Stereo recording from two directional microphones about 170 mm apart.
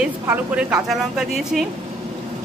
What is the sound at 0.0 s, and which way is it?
A woman's voice, 10° right (ahead or behind).